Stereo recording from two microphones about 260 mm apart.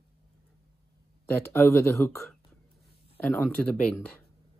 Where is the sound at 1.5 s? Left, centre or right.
Centre.